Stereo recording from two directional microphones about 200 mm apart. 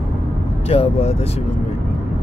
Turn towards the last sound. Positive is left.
turn(degrees=30)  # may be behind; listen again after turning